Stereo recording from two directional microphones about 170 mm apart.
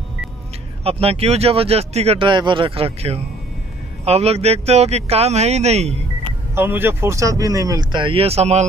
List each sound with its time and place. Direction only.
0.8 s speech: 35° right (ahead or behind)
6.5 s speech: 15° right (ahead or behind); by 8.6 s 40° right (ahead or behind)